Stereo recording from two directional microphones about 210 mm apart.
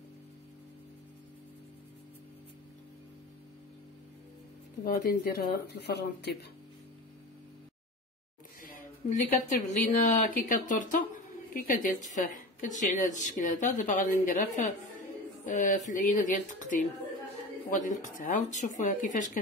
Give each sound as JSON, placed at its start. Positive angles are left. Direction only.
{"t": 4.8, "sound": "speech", "side_deg": 45}
{"t": 8.6, "sound": "a woman's voice", "side_deg": 40}